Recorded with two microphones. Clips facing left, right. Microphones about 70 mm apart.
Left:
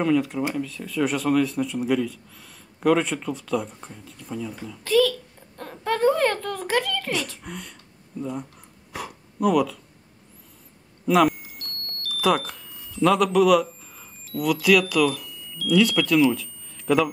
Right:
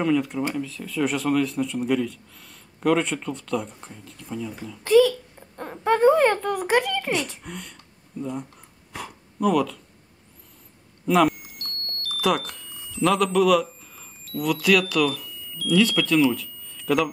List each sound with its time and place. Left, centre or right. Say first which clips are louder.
0.0 s a man's voice: left 1 dB; centre
4.8 s a child's voice: right 3 dB; centre
7.4 s a man's voice: even; centre
8.9 s a sound: left 2 dB; centre
11.1 s vehicle: left 1 dB; centre
12.2 s speech: left 2 dB; centre